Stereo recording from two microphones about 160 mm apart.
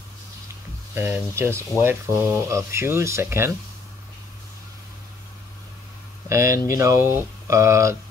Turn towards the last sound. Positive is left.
turn(degrees=-20)  # may be behind; listen again after turning